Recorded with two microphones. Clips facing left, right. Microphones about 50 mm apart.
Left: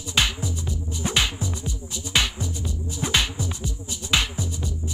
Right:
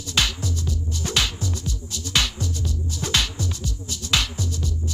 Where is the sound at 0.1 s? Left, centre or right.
Centre.